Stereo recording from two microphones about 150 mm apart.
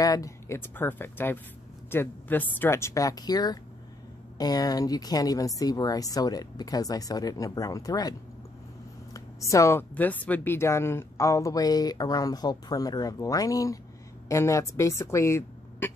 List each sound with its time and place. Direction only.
0.0 s speech: 20° left (ahead or behind)
9.1 s speech: 20° left (ahead or behind)